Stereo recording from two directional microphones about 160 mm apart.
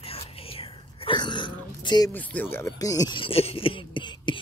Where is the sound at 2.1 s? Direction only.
10° left (ahead or behind); by 4.4 s 30° left (ahead or behind).